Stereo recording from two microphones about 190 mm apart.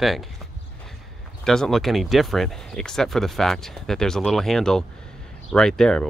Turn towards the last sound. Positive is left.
turn(degrees=5)  # may be behind; listen again after turning